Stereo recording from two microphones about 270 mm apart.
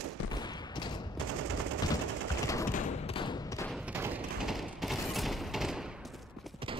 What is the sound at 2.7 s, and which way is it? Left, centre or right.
Thump, left.